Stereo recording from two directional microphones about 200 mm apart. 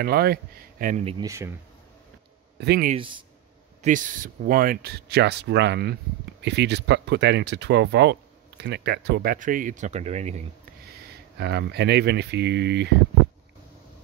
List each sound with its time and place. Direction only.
0.0 s speech: 50° right (ahead or behind)
1.0 s speech: 20° right (ahead or behind)
2.6 s speech: 55° right (ahead or behind)
2.9 s a man's voice: 25° right (ahead or behind)
3.8 s speech: 40° right (ahead or behind)
10.9 s speech: 55° right (ahead or behind)